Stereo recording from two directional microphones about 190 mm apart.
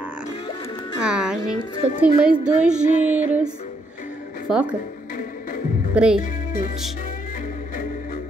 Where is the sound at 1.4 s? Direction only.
20° left (ahead or behind).